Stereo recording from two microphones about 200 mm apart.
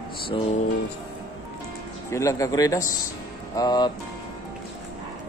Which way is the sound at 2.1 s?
15° left (ahead or behind).